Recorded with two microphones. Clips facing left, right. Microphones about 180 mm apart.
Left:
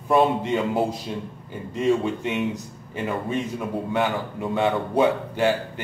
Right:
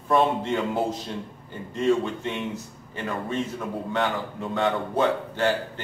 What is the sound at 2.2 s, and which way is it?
A man's voice, 15° left (ahead or behind).